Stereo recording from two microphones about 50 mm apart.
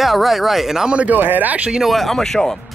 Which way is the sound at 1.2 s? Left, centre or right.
Right.